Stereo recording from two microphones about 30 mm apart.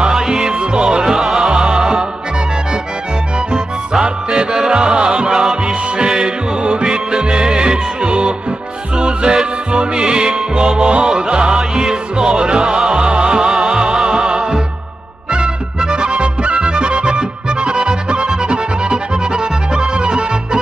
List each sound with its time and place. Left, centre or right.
0.1 s music: centre
0.6 s music: right
1.0 s music: centre
1.5 s music: right
4.0 s music: right
5.3 s music: centre
6.6 s music: right
11.7 s music: centre
12.4 s music: right
12.6 s music: centre
13.0 s music: right
13.4 s music: centre
14.1 s music: right